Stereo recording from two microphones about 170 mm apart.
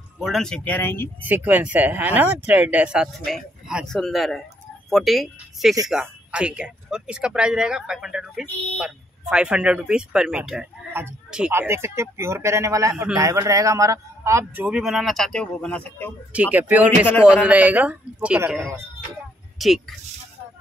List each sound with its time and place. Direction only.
0.2 s speech: centre (ahead or behind)
1.2 s a man's voice: 10° right (ahead or behind); by 16.1 s 10° left (ahead or behind)
16.3 s a man's voice: 10° right (ahead or behind)